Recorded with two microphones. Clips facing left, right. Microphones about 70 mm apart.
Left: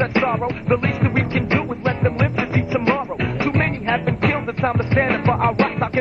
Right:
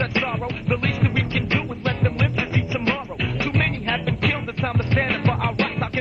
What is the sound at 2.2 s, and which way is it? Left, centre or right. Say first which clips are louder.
Music: left 4 dB; left.